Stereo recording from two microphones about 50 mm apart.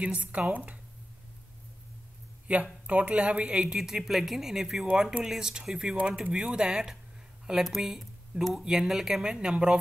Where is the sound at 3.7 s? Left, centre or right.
Centre.